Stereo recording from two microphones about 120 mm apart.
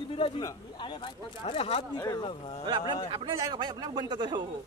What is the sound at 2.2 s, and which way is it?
Speech, 45° left (ahead or behind).